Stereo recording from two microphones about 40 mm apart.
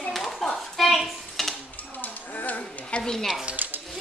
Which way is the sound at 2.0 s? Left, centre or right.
Left.